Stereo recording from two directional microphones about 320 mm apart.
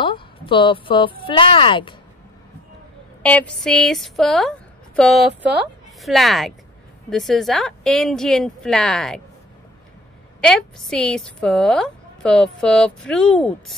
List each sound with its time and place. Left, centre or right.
0.0 s a woman's voice: centre
3.2 s a woman's voice: centre
10.4 s a woman's voice: centre